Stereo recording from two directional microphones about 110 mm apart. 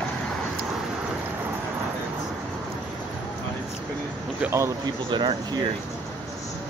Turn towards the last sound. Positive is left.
turn(degrees=-45)  # may be behind; listen again after turning